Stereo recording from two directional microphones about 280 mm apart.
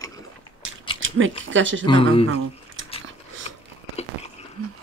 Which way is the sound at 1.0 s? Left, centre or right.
Right.